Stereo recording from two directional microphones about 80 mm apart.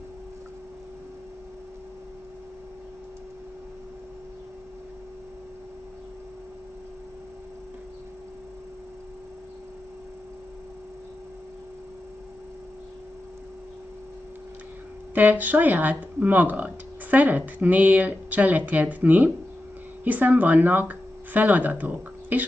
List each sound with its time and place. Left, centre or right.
15.1 s speech: right